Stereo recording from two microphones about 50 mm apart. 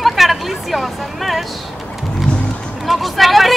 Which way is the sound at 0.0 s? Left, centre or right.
Centre.